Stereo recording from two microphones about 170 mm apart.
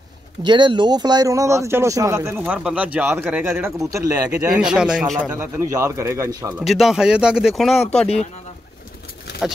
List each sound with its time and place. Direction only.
0.4 s speech: 25° right (ahead or behind)
4.6 s speech: 5° right (ahead or behind)
5.3 s speech: 15° right (ahead or behind)
6.6 s speech: centre (ahead or behind)